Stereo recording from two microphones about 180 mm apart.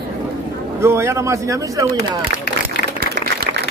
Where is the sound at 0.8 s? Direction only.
15° right (ahead or behind).